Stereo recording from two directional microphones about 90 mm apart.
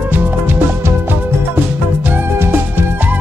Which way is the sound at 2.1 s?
25° right (ahead or behind).